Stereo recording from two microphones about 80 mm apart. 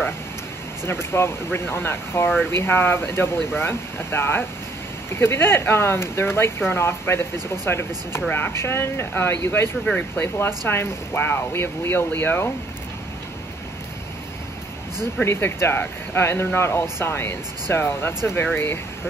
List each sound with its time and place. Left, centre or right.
0.8 s speech: left
15.2 s speech: left